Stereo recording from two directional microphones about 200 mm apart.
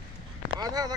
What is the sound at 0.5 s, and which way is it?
Speech, 20° right (ahead or behind).